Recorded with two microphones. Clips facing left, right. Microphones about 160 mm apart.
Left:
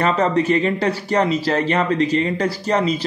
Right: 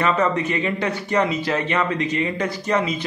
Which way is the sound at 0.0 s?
35° left (ahead or behind).